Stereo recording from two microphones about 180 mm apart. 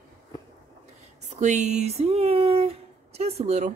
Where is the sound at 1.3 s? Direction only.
40° right (ahead or behind).